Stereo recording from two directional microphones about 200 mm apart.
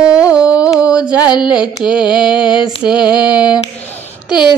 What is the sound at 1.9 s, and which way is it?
Music, 5° right (ahead or behind).